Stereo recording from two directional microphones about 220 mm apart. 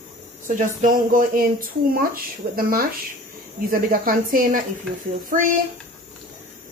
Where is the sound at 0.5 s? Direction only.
35° right (ahead or behind).